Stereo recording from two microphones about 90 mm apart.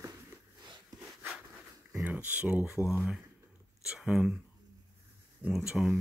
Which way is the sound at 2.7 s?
5° right (ahead or behind).